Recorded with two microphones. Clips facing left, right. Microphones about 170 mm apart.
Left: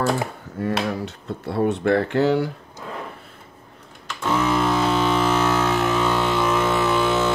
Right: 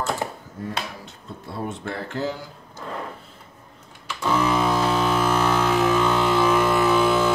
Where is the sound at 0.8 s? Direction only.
70° left (ahead or behind).